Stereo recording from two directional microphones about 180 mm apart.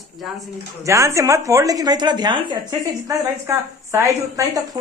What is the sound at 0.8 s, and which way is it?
A woman's voice, 15° right (ahead or behind).